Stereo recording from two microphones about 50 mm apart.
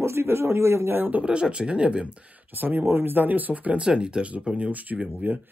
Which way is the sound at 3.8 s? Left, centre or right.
Centre.